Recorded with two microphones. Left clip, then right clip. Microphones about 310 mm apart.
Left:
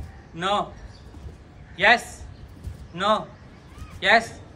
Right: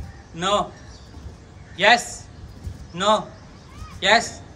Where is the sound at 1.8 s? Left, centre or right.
Centre.